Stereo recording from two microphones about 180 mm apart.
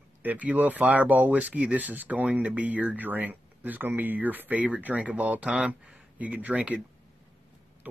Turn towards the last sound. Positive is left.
turn(degrees=-5)  # may be behind; listen again after turning